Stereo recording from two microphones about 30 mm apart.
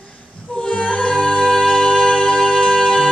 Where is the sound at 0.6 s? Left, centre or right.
Left.